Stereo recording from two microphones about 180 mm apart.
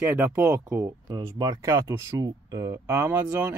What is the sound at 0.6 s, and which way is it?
Speech, 20° right (ahead or behind).